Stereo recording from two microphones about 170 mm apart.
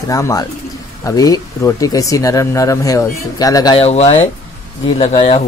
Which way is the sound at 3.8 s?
40° left (ahead or behind).